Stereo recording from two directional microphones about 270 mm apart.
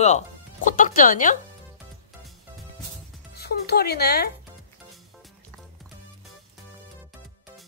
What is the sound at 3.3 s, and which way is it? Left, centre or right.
Music, left.